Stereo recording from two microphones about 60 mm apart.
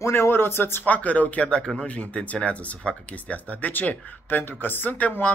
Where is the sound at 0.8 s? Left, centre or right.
Left.